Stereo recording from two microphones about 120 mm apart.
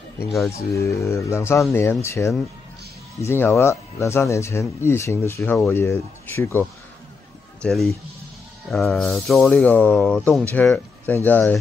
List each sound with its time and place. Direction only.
0.6 s speech: 25° left (ahead or behind)
7.6 s speech: 5° left (ahead or behind)